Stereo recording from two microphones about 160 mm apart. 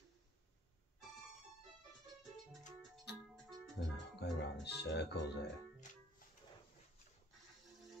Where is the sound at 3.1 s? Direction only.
90° left.